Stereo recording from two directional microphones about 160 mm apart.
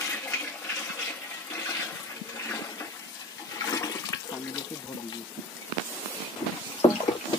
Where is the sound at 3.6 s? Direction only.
20° left (ahead or behind).